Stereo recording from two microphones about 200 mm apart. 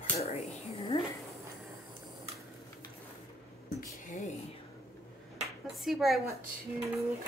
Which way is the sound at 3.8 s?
40° left (ahead or behind).